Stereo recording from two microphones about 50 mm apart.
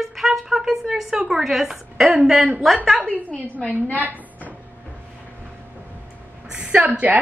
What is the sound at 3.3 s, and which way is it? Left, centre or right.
Speech, left.